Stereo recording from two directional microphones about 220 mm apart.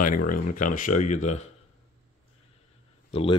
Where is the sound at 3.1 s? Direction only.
30° left (ahead or behind).